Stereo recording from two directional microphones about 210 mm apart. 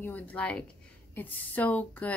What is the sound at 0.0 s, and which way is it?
A woman's voice, 5° left (ahead or behind).